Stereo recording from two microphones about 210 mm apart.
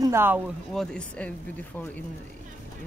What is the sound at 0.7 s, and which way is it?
Speech, 5° left (ahead or behind).